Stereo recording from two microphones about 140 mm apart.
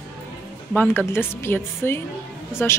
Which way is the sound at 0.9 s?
15° left (ahead or behind).